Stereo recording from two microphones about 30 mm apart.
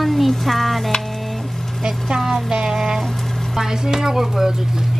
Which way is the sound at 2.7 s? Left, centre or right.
Centre.